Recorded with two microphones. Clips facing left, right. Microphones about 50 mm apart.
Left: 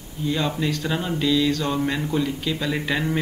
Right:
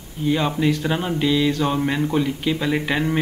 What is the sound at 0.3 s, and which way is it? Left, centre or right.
A man's voice, right.